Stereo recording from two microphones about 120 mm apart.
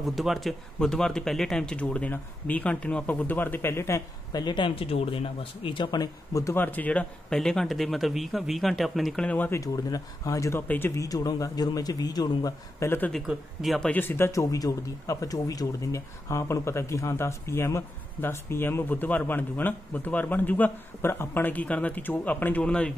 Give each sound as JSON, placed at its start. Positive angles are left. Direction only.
{"t": 0.0, "sound": "speech", "side_deg": 0}
{"t": 4.3, "sound": "speech", "side_deg": 35}
{"t": 9.5, "sound": "a man's voice", "side_deg": 30}
{"t": 13.3, "sound": "speech", "side_deg": 0}